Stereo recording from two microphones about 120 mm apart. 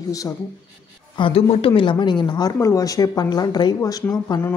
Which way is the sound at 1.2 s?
55° left (ahead or behind).